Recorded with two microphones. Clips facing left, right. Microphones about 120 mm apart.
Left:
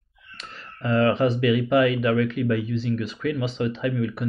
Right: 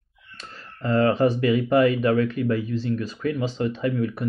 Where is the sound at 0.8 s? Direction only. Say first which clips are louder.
Right 1 dB; 35° right (ahead or behind).